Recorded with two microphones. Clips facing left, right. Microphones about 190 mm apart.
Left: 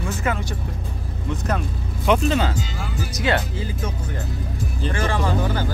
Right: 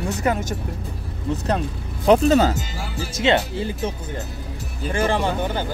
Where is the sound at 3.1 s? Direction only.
25° right (ahead or behind).